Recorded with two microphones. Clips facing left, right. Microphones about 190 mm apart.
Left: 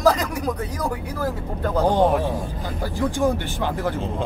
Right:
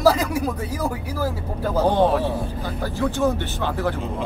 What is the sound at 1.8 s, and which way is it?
Speech, 15° left (ahead or behind).